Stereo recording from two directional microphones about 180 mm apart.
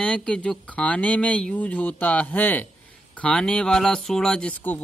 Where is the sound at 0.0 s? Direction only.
5° left (ahead or behind).